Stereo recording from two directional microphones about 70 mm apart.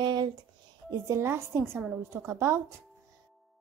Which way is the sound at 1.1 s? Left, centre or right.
Right.